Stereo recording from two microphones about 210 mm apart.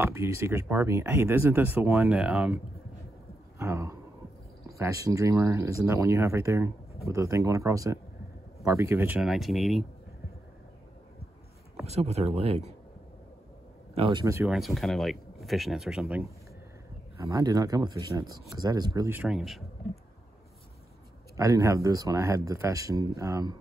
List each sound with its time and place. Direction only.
0.0 s speech: 10° right (ahead or behind)
11.8 s speech: 30° right (ahead or behind)
13.9 s speech: 25° right (ahead or behind)
14.2 s speech: 10° right (ahead or behind)
14.6 s speech: centre (ahead or behind)
17.3 s speech: 15° right (ahead or behind)
21.4 s speech: 15° right (ahead or behind)